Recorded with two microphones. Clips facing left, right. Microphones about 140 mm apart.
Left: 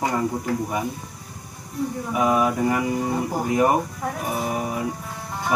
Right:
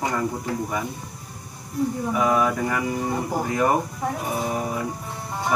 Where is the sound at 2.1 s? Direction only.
15° left (ahead or behind).